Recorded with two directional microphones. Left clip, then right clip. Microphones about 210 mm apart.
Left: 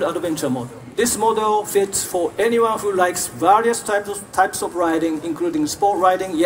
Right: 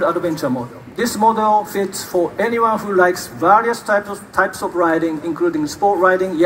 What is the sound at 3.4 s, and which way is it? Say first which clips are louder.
A man's voice: right 2 dB; 35° left (ahead or behind).